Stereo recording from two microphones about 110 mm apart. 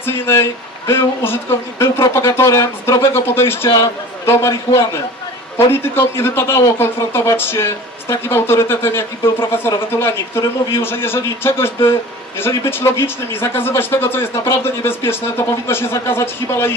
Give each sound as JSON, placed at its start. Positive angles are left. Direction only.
{"t": 0.0, "sound": "a man's voice", "side_deg": 20}